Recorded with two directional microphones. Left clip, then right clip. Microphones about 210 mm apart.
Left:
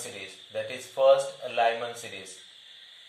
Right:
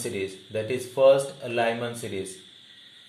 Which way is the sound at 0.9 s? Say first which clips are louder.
Right 2 dB; 35° right (ahead or behind).